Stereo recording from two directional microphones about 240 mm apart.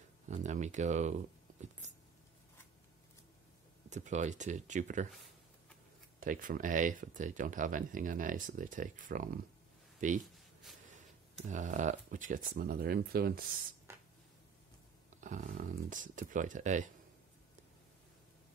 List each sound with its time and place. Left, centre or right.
0.3 s speech: right
3.9 s speech: right
6.1 s speech: right
10.2 s a sound: centre
11.3 s speech: right
15.1 s speech: right